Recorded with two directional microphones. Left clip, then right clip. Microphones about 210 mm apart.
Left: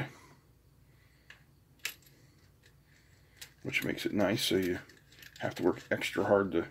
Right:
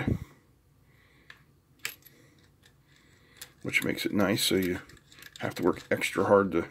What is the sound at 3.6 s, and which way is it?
Speech, 20° right (ahead or behind).